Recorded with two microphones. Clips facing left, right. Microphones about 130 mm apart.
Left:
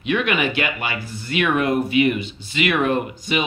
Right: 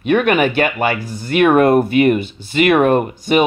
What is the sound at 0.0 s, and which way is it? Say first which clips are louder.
Speech: right 7 dB; 50° right (ahead or behind).